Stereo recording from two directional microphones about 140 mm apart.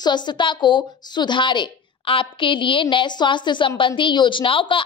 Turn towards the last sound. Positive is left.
turn(degrees=35)  # may be behind; listen again after turning